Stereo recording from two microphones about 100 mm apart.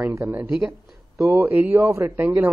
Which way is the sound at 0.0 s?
30° right (ahead or behind).